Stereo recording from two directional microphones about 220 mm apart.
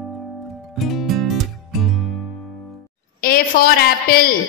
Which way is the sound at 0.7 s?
Centre (ahead or behind).